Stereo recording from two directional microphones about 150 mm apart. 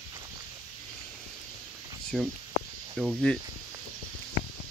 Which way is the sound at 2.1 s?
Centre (ahead or behind).